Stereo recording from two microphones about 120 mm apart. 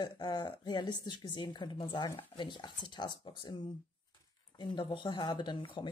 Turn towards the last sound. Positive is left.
turn(degrees=40)  # may be behind; listen again after turning